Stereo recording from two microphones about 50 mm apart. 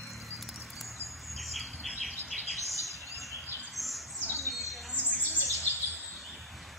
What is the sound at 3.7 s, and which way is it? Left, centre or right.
Bird, centre.